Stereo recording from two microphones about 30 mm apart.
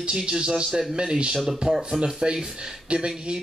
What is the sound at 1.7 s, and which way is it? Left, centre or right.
Speech, right.